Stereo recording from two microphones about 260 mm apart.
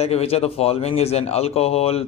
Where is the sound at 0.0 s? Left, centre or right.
Left.